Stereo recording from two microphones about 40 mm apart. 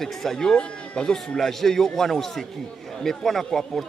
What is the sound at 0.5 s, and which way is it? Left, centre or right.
Speech, left.